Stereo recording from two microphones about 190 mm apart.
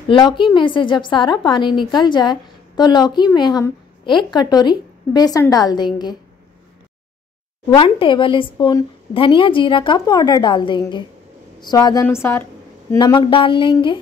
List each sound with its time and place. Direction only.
0.1 s a woman's voice: 25° left (ahead or behind)
7.7 s a woman's voice: 25° left (ahead or behind)
12.9 s a woman's voice: 25° left (ahead or behind)